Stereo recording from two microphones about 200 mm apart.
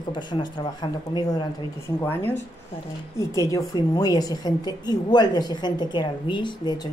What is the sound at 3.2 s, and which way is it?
A woman's voice, 15° left (ahead or behind).